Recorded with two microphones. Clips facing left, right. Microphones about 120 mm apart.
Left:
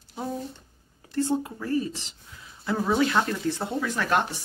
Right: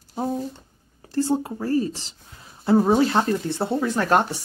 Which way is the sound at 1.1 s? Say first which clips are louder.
Right 3 dB; 35° right (ahead or behind).